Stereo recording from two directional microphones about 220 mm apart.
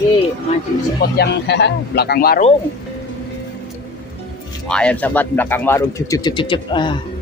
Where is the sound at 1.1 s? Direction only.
50° left (ahead or behind).